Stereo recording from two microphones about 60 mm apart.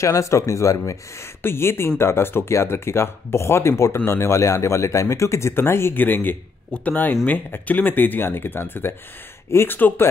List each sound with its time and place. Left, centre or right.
0.0 s speech: left
1.4 s speech: left
9.8 s speech: left